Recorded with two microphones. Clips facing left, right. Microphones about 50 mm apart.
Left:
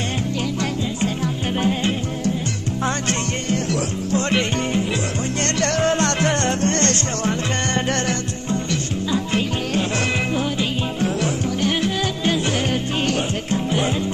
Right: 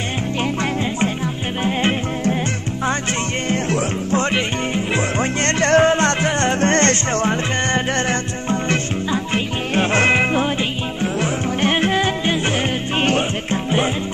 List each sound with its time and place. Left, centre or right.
1.0 s music: right
3.7 s music: right
4.3 s music: centre
5.6 s music: right
9.1 s music: right